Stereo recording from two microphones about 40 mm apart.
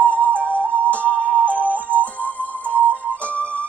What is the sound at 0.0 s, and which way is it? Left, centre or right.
Music, left.